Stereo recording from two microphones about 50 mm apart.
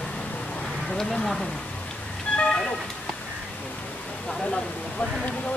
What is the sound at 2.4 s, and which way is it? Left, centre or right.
Vehicle, left.